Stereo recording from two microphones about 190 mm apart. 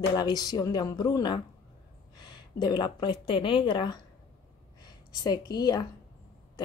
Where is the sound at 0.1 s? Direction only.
20° left (ahead or behind).